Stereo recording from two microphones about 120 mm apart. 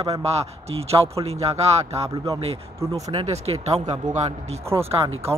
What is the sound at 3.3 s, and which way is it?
Speech, 60° right (ahead or behind).